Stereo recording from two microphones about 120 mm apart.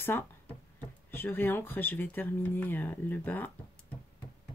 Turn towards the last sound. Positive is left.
turn(degrees=15)  # may be behind; listen again after turning